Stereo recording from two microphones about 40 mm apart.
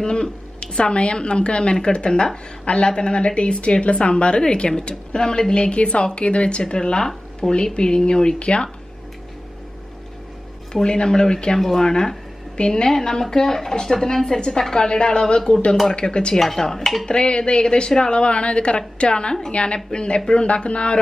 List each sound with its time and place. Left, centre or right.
0.0 s a woman's voice: left
10.7 s a woman's voice: left
16.3 s stir: centre
16.6 s a woman's voice: centre
17.0 s speech: left